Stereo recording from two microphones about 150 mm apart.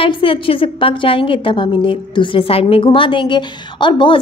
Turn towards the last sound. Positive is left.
turn(degrees=30)  # may be behind; listen again after turning